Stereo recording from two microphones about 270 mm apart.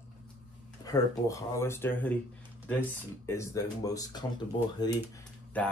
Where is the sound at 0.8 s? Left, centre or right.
Centre.